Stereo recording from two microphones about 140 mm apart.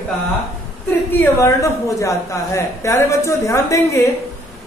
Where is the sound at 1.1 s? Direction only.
20° left (ahead or behind).